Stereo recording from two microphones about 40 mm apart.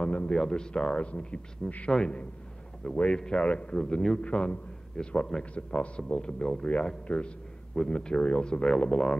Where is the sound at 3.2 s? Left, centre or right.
Left.